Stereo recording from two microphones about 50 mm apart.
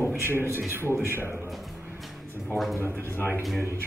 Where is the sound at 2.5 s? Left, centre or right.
Centre.